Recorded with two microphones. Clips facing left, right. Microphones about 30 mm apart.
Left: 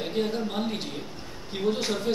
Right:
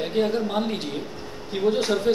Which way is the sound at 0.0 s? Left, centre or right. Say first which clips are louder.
Right 5 dB; centre.